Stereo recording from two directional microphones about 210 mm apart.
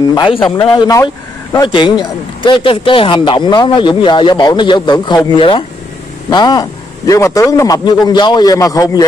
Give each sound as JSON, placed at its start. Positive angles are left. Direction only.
{"t": 0.1, "sound": "a man's voice", "side_deg": 20}